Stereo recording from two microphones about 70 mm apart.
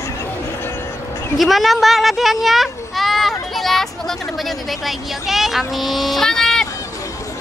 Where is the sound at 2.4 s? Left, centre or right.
Centre.